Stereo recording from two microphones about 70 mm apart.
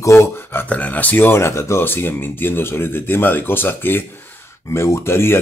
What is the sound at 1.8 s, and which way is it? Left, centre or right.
Speech, left.